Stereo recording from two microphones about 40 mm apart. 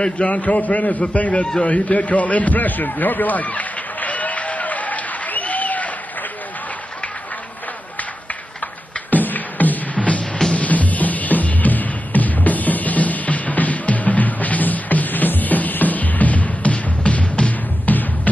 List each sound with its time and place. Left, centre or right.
0.0 s a man's voice: left
1.6 s a sound: left
9.1 s music: left
9.9 s music: left